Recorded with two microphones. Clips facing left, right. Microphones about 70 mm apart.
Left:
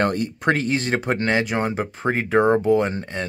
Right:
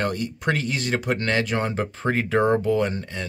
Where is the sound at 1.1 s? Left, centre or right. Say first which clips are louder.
Left 2 dB; left.